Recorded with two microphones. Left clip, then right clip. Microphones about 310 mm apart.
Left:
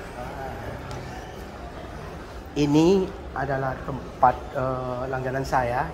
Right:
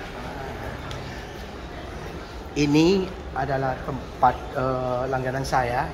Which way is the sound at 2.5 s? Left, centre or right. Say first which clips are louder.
Even; centre.